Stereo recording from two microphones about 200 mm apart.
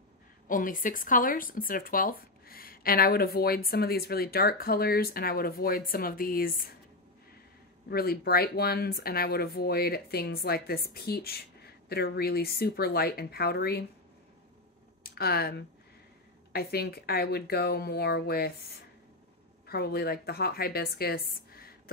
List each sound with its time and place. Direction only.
0.5 s speech: 45° left (ahead or behind)
7.9 s speech: 50° left (ahead or behind)
15.0 s a woman's voice: 50° left (ahead or behind)